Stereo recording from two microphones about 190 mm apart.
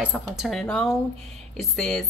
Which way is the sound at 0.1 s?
Centre (ahead or behind).